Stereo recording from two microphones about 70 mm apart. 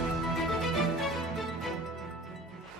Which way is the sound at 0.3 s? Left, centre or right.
Centre.